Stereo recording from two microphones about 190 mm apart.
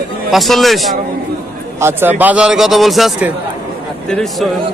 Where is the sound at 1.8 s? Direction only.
10° right (ahead or behind).